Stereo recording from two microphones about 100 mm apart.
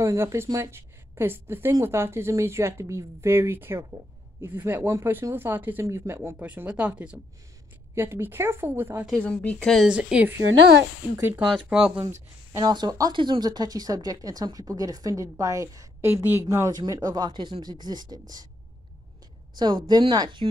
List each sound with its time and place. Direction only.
0.0 s a woman's voice: 30° right (ahead or behind)
6.4 s speech: 15° right (ahead or behind)
7.9 s a woman's voice: 25° right (ahead or behind)
9.2 s speech: 10° left (ahead or behind)
9.8 s a woman's voice: 10° right (ahead or behind)
11.4 s speech: 5° right (ahead or behind)
12.5 s speech: 40° right (ahead or behind)
13.1 s speech: 55° right (ahead or behind)
19.5 s speech: 45° right (ahead or behind)